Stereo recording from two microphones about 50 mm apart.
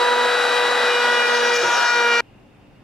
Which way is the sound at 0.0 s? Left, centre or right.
Centre.